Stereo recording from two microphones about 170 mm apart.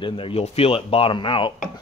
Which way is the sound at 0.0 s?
30° left (ahead or behind).